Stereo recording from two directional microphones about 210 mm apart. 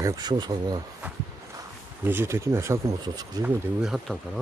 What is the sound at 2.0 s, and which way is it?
Speech, 10° right (ahead or behind).